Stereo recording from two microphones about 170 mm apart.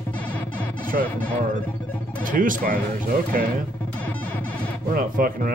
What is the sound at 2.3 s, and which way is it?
Speech, 50° right (ahead or behind).